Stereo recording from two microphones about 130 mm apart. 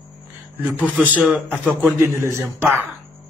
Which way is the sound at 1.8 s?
15° right (ahead or behind).